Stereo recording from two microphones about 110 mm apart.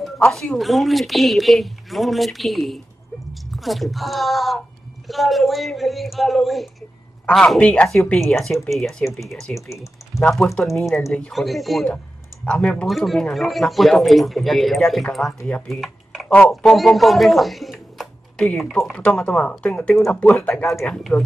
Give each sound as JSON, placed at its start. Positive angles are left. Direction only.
{"t": 0.2, "sound": "speech", "side_deg": 5}
{"t": 9.7, "sound": "typing", "side_deg": 25}
{"t": 10.2, "sound": "speech", "side_deg": 0}
{"t": 15.7, "sound": "computer keyboard", "side_deg": 0}
{"t": 16.3, "sound": "speech", "side_deg": 10}
{"t": 16.7, "sound": "speech", "side_deg": 0}